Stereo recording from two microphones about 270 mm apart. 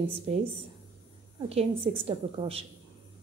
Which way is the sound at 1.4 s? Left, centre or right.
Right.